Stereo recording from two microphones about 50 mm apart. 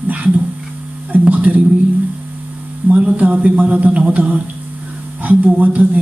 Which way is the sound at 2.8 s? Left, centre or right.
Right.